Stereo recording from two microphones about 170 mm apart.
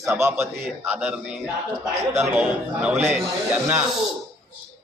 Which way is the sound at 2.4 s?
5° right (ahead or behind).